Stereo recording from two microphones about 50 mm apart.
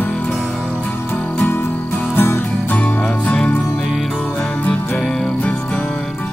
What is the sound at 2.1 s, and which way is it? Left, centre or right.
Music, left.